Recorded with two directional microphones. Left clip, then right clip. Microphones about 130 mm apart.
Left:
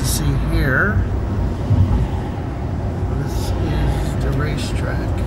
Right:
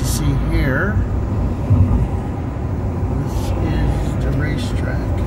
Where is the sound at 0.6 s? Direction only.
10° right (ahead or behind).